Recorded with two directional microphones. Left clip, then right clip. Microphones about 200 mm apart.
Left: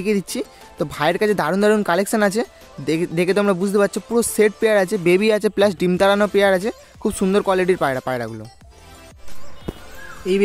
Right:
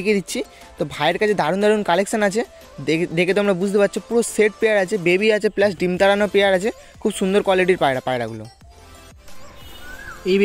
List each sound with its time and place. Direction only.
0.0 s speech: 15° left (ahead or behind)